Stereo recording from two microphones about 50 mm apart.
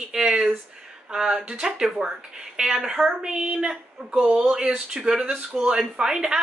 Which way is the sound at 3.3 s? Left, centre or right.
Right.